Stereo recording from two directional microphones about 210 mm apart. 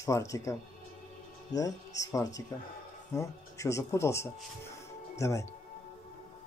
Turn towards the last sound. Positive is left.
turn(degrees=15)  # may be behind; listen again after turning